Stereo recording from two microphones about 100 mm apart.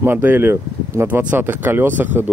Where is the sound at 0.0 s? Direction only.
20° right (ahead or behind).